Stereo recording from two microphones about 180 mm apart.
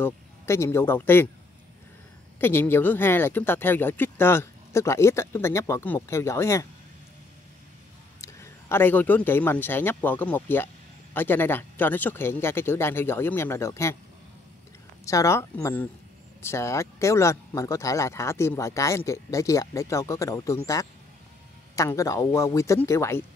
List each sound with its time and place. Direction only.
0.0 s speech: 15° left (ahead or behind)
2.4 s speech: 10° left (ahead or behind)
8.2 s a man's voice: 15° left (ahead or behind)
15.0 s speech: 15° left (ahead or behind)